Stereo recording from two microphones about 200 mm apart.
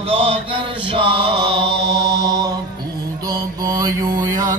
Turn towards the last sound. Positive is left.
turn(degrees=-15)  # may be behind; listen again after turning